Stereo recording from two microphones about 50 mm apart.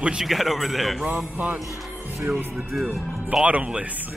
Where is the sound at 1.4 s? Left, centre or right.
Right.